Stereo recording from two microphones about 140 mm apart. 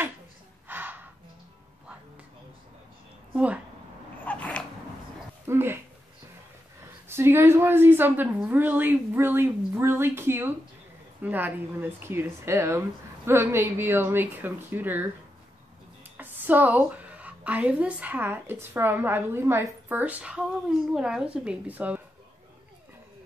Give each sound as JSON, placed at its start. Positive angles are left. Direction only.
{"t": 0.7, "sound": "gasp", "side_deg": -15}
{"t": 3.3, "sound": "speech", "side_deg": -10}
{"t": 4.2, "sound": "a sound", "side_deg": 10}
{"t": 5.5, "sound": "speech", "side_deg": -15}
{"t": 7.1, "sound": "speech", "side_deg": -15}
{"t": 16.2, "sound": "a woman's voice", "side_deg": -10}